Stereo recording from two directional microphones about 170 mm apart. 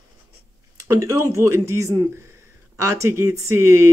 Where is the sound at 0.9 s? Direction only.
15° right (ahead or behind).